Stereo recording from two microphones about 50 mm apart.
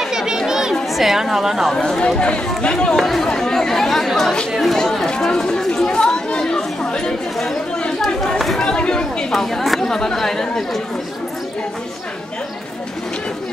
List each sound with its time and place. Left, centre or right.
0.0 s chatter: centre
0.5 s a sound: centre
1.8 s speech: centre
3.0 s speech: centre
4.7 s chatter: centre
8.4 s chatter: centre
8.6 s chatter: centre
9.3 s speech: centre